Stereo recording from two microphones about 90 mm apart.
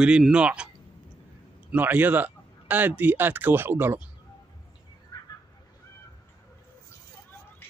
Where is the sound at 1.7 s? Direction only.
20° right (ahead or behind).